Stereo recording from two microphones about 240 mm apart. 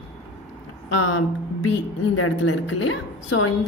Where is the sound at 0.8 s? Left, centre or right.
Left.